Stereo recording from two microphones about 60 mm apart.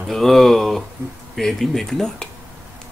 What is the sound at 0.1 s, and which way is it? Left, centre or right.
Speech, centre.